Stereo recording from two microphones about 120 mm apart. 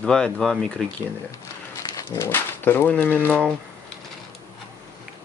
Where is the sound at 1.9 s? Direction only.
25° left (ahead or behind).